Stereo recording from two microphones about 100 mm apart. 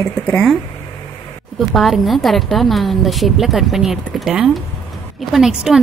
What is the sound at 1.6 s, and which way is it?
A woman's voice, centre (ahead or behind).